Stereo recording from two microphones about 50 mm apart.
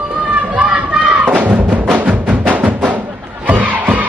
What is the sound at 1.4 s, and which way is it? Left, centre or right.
Music, right.